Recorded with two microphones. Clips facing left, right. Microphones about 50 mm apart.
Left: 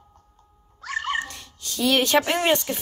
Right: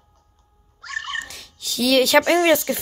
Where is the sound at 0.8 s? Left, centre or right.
Centre.